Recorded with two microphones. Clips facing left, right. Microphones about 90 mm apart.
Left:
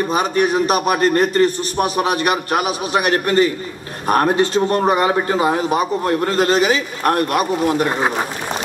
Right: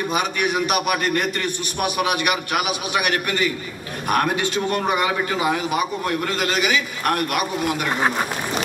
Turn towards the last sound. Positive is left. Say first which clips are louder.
# left 6 dB
turn(degrees=35)  # may be behind; listen again after turning